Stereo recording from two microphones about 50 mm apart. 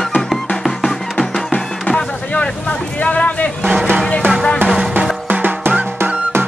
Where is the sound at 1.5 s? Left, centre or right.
Left.